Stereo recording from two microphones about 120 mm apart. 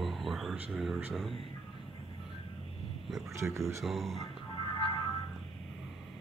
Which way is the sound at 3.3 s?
25° right (ahead or behind).